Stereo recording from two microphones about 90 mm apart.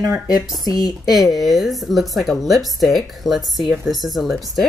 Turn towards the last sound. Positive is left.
turn(degrees=0)  # may be behind; listen again after turning